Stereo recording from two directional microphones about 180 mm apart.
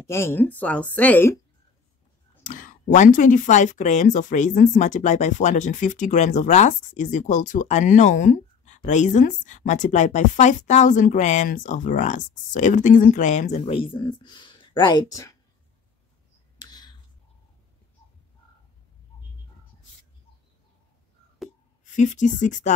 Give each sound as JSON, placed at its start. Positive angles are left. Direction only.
{"t": 0.0, "sound": "a woman's voice", "side_deg": 15}
{"t": 2.4, "sound": "speech", "side_deg": 45}
{"t": 16.5, "sound": "a sound", "side_deg": 20}
{"t": 21.9, "sound": "speech", "side_deg": 45}